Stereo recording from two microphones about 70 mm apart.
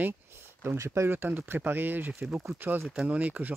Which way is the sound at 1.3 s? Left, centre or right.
Right.